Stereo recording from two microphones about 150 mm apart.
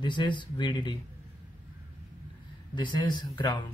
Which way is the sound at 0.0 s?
30° left (ahead or behind).